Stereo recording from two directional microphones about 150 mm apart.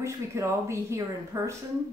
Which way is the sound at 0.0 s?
20° right (ahead or behind).